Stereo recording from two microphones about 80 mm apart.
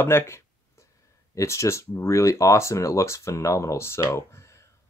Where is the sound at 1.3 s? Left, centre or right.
Left.